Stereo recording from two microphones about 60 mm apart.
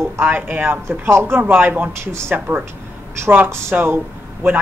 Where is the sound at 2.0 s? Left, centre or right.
Right.